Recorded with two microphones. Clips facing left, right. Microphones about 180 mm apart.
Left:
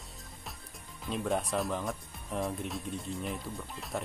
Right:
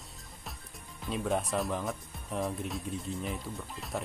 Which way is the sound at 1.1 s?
Centre (ahead or behind).